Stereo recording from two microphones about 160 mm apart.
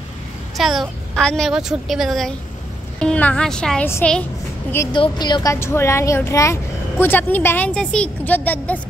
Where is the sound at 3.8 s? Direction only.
15° left (ahead or behind).